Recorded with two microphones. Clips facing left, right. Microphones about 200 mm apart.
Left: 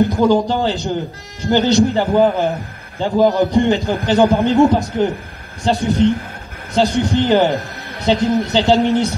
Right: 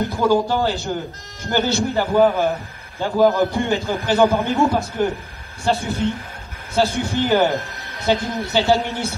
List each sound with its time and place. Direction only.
0.0 s a man's voice: 15° left (ahead or behind)